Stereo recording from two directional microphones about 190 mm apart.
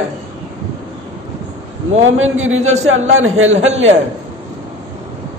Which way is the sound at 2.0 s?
90° right.